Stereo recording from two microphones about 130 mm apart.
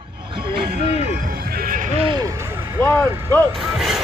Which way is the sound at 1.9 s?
40° right (ahead or behind).